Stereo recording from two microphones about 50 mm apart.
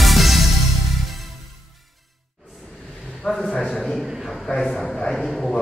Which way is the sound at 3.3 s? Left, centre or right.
Left.